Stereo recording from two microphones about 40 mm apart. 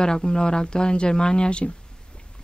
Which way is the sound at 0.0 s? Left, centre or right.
Centre.